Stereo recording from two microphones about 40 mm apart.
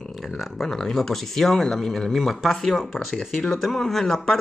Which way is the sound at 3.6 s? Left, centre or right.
Centre.